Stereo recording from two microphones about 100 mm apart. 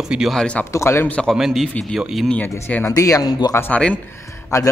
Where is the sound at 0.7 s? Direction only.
30° left (ahead or behind).